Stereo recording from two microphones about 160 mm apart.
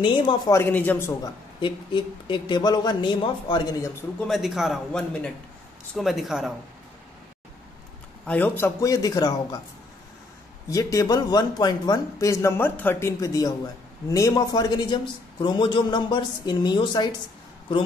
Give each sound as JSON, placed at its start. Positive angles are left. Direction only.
{"t": 0.0, "sound": "speech", "side_deg": 30}
{"t": 0.5, "sound": "a man's voice", "side_deg": 15}
{"t": 1.6, "sound": "a man's voice", "side_deg": 30}
{"t": 4.2, "sound": "a man's voice", "side_deg": 0}
{"t": 8.3, "sound": "a man's voice", "side_deg": 10}
{"t": 10.7, "sound": "a man's voice", "side_deg": 20}